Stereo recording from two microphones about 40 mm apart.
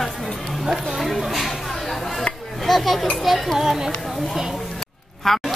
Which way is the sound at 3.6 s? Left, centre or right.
Centre.